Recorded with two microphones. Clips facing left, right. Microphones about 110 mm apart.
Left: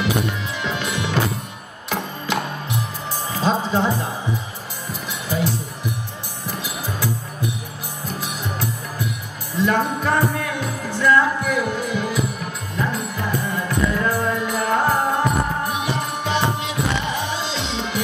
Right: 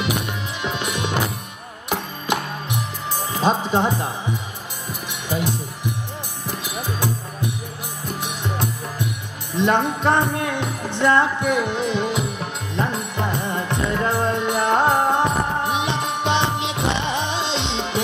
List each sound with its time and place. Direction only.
0.6 s music: 20° right (ahead or behind)
5.3 s music: 15° right (ahead or behind)